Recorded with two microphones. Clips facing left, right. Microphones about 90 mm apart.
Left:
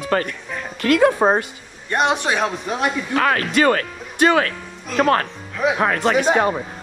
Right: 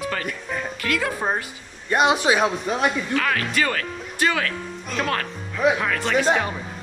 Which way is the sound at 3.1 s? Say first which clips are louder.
Left 5 dB; 40° left (ahead or behind).